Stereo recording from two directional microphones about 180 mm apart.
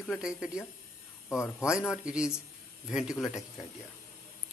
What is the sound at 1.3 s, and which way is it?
Speech, 15° left (ahead or behind).